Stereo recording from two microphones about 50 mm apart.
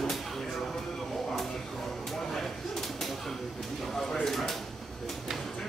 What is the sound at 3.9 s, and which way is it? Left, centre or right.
Speech, centre.